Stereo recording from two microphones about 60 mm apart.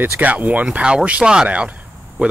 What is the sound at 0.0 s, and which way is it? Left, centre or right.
Speech, right.